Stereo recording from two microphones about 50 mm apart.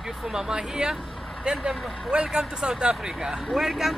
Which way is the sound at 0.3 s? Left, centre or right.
Centre.